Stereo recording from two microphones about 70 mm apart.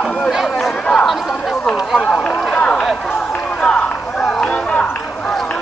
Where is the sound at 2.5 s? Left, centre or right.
Centre.